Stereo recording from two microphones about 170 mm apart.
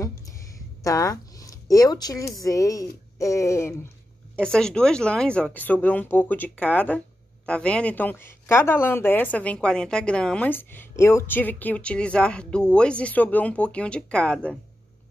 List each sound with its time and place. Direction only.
0.8 s speech: 20° left (ahead or behind)
4.4 s speech: 5° left (ahead or behind)